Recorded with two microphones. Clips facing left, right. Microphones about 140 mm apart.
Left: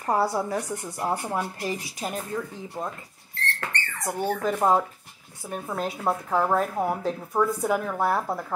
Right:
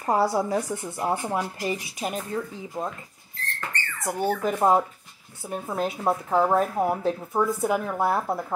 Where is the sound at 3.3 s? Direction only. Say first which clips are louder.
Left 2 dB; 75° left (ahead or behind).